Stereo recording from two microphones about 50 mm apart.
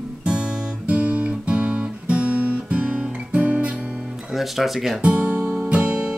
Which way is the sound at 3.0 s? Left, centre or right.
Right.